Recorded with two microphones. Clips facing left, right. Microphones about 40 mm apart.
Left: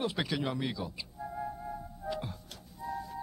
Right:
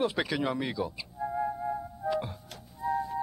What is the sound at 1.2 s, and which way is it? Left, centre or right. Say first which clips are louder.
Music: right 8 dB; right.